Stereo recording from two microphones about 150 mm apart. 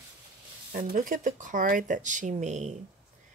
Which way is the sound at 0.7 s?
60° right (ahead or behind).